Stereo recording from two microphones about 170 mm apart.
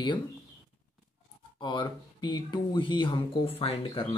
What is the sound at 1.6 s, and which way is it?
Speech, 25° left (ahead or behind).